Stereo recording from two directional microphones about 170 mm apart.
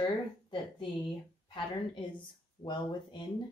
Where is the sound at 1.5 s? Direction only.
30° left (ahead or behind).